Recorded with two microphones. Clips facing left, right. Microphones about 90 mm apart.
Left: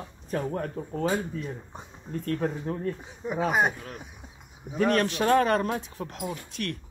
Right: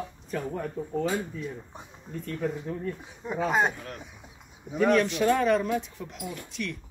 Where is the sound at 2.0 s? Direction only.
50° left (ahead or behind).